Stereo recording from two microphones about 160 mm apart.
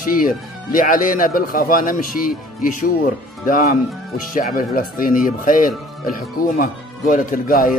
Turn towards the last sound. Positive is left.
turn(degrees=60)  # may be behind; listen again after turning